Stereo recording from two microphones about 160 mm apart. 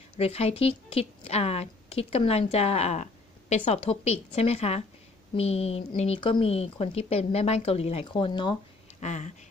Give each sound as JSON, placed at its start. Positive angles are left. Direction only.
{"t": 0.2, "sound": "a woman's voice", "side_deg": 40}
{"t": 9.0, "sound": "speech", "side_deg": 50}